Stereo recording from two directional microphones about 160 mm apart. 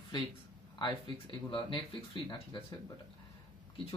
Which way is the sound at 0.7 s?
30° left (ahead or behind).